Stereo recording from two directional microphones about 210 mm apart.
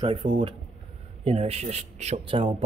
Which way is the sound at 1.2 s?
30° right (ahead or behind).